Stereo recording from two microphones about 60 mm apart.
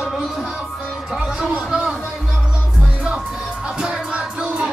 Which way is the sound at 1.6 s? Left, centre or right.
Centre.